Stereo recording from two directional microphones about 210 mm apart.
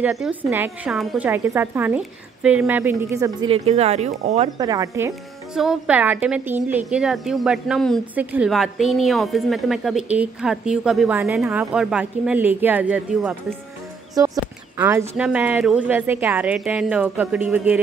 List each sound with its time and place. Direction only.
0.0 s speech: 5° right (ahead or behind); by 4.5 s 30° right (ahead or behind)
4.6 s speech: 15° right (ahead or behind)
5.5 s a woman's voice: 5° right (ahead or behind)
14.1 s speech: 15° right (ahead or behind)